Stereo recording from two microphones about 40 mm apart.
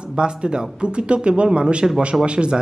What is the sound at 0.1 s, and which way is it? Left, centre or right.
Speech, right.